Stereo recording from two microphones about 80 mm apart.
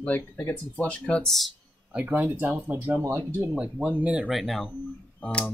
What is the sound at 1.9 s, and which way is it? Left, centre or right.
Speech, right.